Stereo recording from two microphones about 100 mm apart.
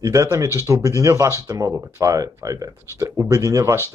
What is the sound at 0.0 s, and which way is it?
Speech, 35° right (ahead or behind).